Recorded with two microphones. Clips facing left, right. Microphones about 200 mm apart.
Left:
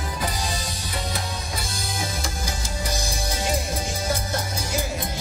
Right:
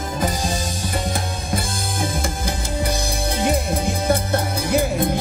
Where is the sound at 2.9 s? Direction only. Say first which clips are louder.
Right 5 dB; 60° right (ahead or behind).